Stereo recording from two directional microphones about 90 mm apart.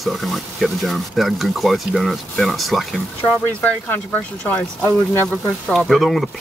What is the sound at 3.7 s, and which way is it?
Speech, 20° left (ahead or behind).